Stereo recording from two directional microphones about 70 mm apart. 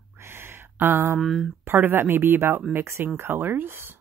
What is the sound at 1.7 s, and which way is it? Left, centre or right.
Speech, right.